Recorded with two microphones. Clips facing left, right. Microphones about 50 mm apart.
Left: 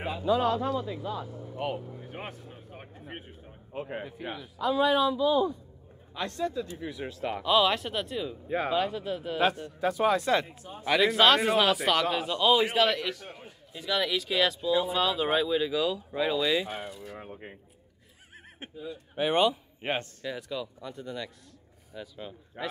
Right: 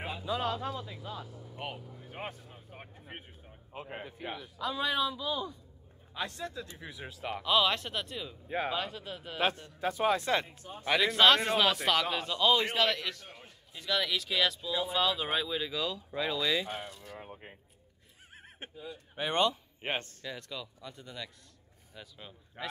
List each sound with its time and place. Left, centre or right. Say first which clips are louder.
0.1 s speech: left 8 dB; centre
1.2 s speech: left 8 dB; left
4.6 s speech: left 8 dB; centre
9.8 s speech: left 3 dB; right
11.0 s speech: left 2 dB; centre
18.8 s speech: left 7 dB; centre